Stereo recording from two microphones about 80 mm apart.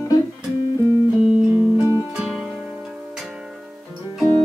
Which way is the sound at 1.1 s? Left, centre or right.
Centre.